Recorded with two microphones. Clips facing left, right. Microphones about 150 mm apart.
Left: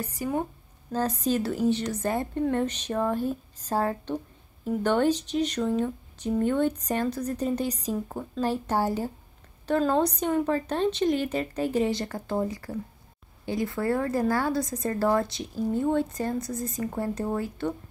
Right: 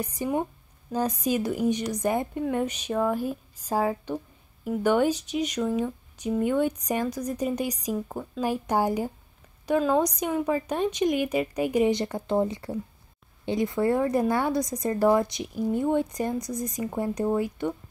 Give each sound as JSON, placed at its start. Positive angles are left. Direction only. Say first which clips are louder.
{"t": 0.0, "sound": "speech", "louder": "right 2 dB", "side_deg": -20}